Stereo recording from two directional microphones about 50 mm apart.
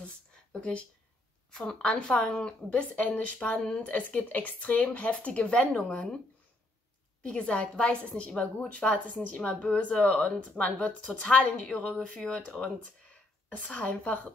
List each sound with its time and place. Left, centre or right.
0.6 s a woman's voice: left
7.2 s a woman's voice: left